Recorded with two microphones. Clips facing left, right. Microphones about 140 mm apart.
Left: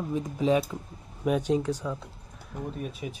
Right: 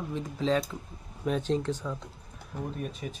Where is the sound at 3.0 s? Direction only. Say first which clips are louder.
Left 2 dB; 10° left (ahead or behind).